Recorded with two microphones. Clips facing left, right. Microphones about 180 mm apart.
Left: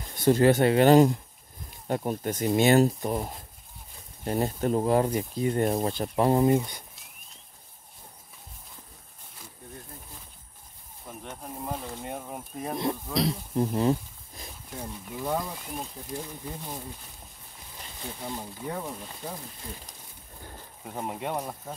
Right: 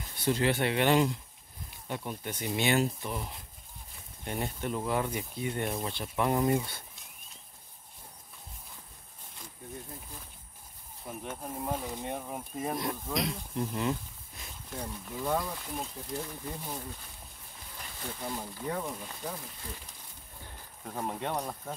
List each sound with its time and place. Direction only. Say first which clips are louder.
0.1 s speech: left 8 dB; 45° left (ahead or behind); by 6.8 s 20° left (ahead or behind)
11.1 s speech: right 1 dB; centre (ahead or behind)
13.1 s speech: left 5 dB; 35° left (ahead or behind)
14.7 s speech: left 1 dB; 5° left (ahead or behind)
18.0 s speech: left 1 dB; 15° left (ahead or behind)
20.8 s speech: left 2 dB; 10° left (ahead or behind)